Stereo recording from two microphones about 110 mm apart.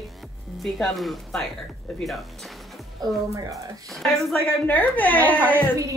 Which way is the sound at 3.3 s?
30° right (ahead or behind).